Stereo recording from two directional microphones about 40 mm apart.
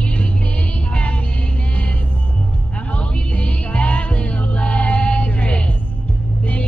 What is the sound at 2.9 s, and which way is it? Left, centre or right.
Music, left.